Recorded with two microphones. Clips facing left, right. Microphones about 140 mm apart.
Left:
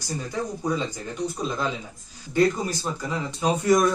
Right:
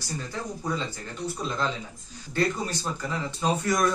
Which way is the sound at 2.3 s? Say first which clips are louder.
Left 5 dB; 10° left (ahead or behind).